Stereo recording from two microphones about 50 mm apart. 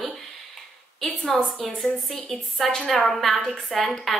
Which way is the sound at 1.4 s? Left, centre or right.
Centre.